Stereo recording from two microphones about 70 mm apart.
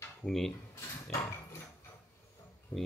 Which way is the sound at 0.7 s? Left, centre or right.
Left.